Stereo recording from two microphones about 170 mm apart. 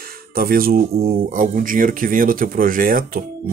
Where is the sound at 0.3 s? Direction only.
60° right (ahead or behind).